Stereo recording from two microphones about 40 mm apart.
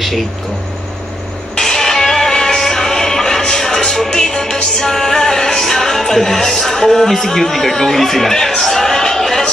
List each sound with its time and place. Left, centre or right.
1.6 s music: centre